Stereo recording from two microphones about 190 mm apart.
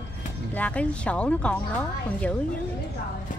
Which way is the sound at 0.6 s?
5° left (ahead or behind).